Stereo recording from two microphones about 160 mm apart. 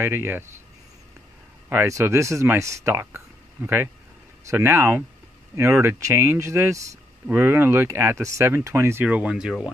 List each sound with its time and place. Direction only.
0.0 s speech: 15° right (ahead or behind)
1.7 s speech: 15° right (ahead or behind)